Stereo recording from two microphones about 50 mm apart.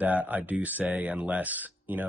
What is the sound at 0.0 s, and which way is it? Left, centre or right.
Speech, right.